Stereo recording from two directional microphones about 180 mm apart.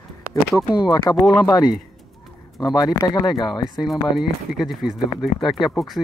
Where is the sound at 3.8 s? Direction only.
Centre (ahead or behind).